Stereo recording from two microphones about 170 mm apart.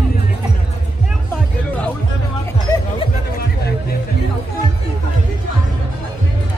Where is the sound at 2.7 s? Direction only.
20° left (ahead or behind).